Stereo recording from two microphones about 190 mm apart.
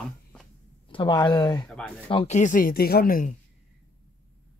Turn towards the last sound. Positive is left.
turn(degrees=50)  # may be behind; listen again after turning